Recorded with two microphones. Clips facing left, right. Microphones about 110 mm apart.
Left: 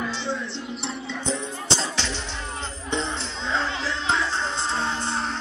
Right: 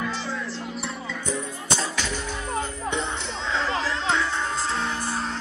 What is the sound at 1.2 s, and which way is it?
Music, 25° left (ahead or behind).